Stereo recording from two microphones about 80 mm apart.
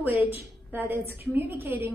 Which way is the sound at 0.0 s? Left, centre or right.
Right.